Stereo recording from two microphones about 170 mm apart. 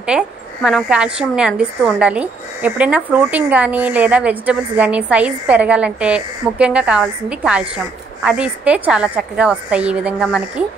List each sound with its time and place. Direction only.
0.1 s a woman's voice: 5° right (ahead or behind)